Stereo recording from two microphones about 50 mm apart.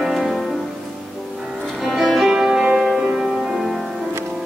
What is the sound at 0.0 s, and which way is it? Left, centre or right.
Music, centre.